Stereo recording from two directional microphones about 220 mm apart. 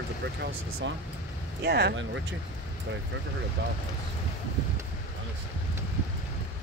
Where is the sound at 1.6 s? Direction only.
50° right (ahead or behind).